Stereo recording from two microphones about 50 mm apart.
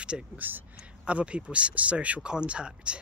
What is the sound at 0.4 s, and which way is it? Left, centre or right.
Speech, right.